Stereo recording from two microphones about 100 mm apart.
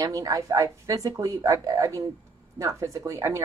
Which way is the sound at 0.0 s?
35° right (ahead or behind).